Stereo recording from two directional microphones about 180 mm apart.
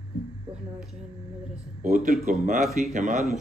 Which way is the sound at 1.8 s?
50° right (ahead or behind).